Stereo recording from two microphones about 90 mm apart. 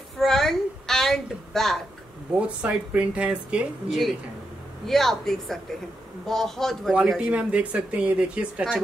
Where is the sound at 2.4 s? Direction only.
10° right (ahead or behind).